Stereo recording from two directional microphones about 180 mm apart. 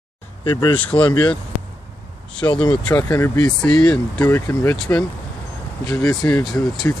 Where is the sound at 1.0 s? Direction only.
5° left (ahead or behind).